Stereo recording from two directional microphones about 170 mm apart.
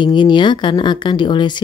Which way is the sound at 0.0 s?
25° left (ahead or behind).